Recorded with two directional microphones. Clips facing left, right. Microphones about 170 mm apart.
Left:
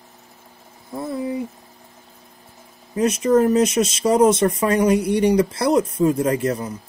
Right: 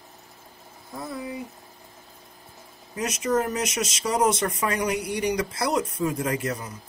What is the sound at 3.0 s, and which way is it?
Speech, 30° left (ahead or behind).